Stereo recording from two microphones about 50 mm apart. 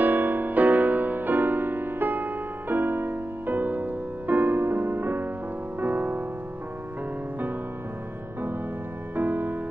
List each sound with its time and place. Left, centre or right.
0.0 s music: right
4.5 s music: right
9.1 s music: right